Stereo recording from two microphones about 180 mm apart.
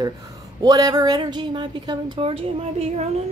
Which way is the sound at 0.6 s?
20° right (ahead or behind).